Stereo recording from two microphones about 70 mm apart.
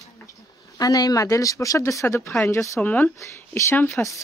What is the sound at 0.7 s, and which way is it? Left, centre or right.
Speech, left.